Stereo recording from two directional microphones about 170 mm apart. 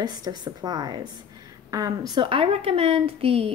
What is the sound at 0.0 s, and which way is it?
A woman's voice, 25° right (ahead or behind).